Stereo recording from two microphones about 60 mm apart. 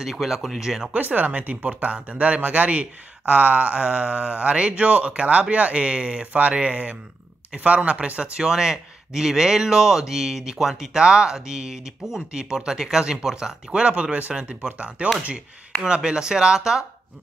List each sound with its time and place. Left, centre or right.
0.0 s speech: centre
0.9 s speech: right; by 16.8 s centre